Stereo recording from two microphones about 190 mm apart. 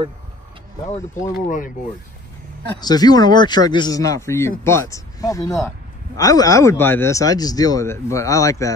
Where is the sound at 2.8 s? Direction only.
20° left (ahead or behind).